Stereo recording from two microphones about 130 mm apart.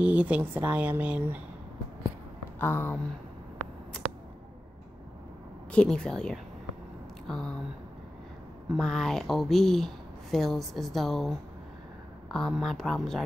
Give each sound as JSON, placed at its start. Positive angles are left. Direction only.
{"t": 0.0, "sound": "speech", "side_deg": -10}
{"t": 2.6, "sound": "speech", "side_deg": 15}
{"t": 5.7, "sound": "speech", "side_deg": 5}
{"t": 7.2, "sound": "a sound", "side_deg": 5}
{"t": 8.6, "sound": "speech", "side_deg": 0}